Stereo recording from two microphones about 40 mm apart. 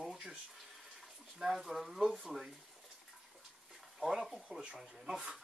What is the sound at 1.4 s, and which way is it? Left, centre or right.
Speech, centre.